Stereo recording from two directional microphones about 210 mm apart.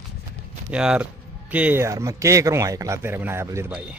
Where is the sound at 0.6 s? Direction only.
5° right (ahead or behind).